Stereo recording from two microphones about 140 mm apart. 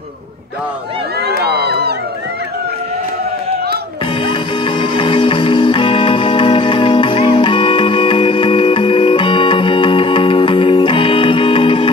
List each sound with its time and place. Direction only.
4.3 s music: 35° left (ahead or behind)